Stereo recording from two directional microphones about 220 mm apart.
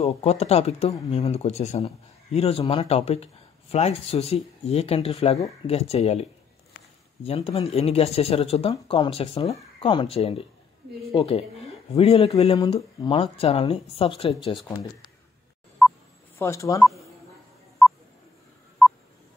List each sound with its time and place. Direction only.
0.0 s speech: 30° left (ahead or behind)
7.2 s speech: 25° left (ahead or behind)
15.8 s telephone dialing: centre (ahead or behind)
16.3 s speech: 15° left (ahead or behind)
17.8 s a sound: centre (ahead or behind)